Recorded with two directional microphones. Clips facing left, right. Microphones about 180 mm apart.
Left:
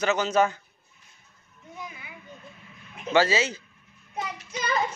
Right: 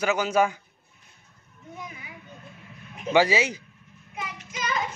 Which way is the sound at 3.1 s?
15° right (ahead or behind).